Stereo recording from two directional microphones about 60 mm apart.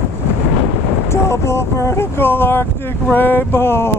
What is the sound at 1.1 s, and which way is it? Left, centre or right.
Speech, left.